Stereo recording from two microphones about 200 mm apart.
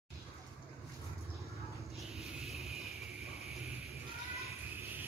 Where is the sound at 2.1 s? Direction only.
Centre (ahead or behind).